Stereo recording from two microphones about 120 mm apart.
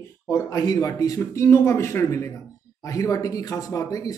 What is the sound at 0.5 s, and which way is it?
Speech, 30° left (ahead or behind).